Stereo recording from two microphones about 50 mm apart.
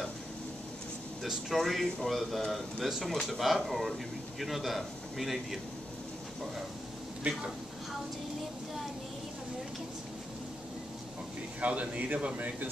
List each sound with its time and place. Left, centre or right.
1.2 s speech: centre
11.6 s speech: right